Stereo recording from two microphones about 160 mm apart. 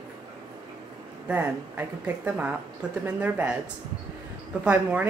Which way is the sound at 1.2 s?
10° right (ahead or behind).